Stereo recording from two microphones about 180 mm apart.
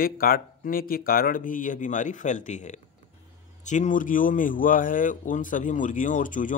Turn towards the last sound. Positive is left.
turn(degrees=45)  # may be behind; listen again after turning